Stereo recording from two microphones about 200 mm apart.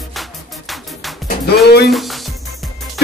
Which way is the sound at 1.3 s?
55° left (ahead or behind).